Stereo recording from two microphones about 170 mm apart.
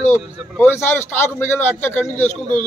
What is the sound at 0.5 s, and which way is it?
A man's voice, 15° left (ahead or behind).